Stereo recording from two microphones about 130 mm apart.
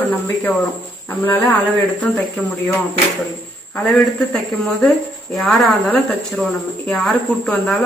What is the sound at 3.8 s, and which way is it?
Speech, 10° left (ahead or behind).